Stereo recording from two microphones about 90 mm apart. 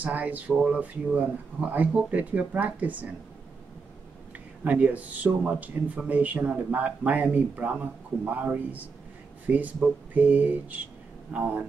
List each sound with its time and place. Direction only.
0.0 s speech: 20° right (ahead or behind)
4.6 s speech: 15° right (ahead or behind)